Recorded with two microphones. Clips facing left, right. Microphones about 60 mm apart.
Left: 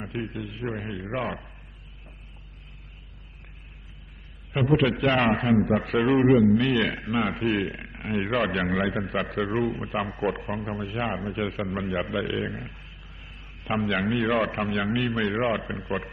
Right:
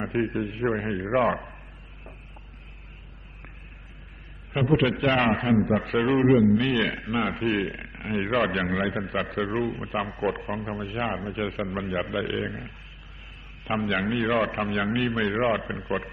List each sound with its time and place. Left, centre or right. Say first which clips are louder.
0.1 s a man's voice: right 7 dB; right
0.9 s a man's voice: right 7 dB; centre
4.5 s a man's voice: even; centre
6.9 s a man's voice: even; centre
7.2 s a man's voice: even; centre